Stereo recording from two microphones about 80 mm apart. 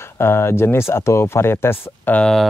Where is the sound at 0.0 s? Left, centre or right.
Left.